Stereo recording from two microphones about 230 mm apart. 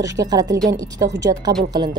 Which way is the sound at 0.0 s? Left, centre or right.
Centre.